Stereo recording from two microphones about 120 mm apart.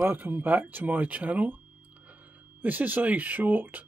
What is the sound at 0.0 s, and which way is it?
Speech, 15° right (ahead or behind).